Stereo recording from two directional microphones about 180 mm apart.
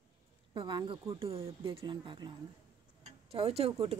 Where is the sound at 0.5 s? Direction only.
25° right (ahead or behind).